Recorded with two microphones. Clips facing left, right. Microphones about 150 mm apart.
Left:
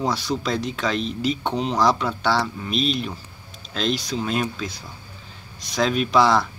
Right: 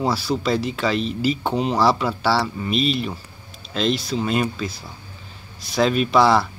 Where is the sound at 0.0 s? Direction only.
5° right (ahead or behind).